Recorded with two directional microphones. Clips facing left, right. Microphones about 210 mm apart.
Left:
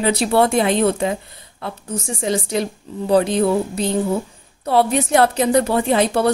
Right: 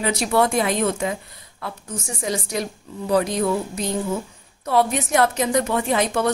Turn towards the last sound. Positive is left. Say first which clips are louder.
# left 4 dB
turn(degrees=35)  # may be behind; listen again after turning